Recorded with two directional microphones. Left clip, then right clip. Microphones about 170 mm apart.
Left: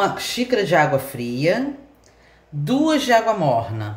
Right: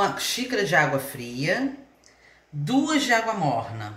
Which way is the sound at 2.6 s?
65° left (ahead or behind).